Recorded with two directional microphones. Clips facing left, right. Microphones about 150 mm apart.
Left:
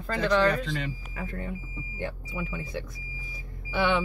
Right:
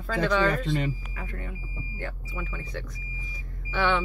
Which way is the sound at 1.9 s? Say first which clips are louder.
Left 3 dB; 15° left (ahead or behind).